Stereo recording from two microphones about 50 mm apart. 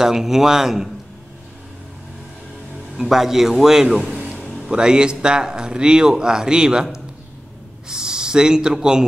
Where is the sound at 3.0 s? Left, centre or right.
Centre.